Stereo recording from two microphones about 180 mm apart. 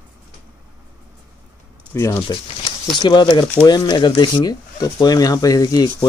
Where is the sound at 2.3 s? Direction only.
30° left (ahead or behind).